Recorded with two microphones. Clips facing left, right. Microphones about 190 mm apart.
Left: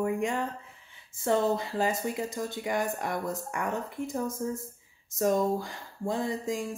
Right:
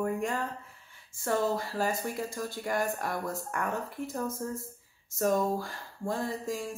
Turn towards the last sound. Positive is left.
turn(degrees=20)  # may be behind; listen again after turning